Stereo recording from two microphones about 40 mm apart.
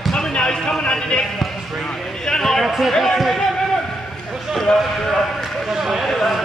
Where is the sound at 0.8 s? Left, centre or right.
Left.